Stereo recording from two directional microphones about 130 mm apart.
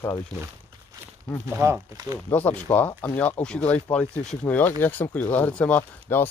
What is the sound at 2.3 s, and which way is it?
Speech, 15° left (ahead or behind).